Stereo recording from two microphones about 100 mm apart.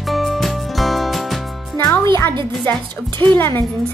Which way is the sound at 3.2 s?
20° left (ahead or behind).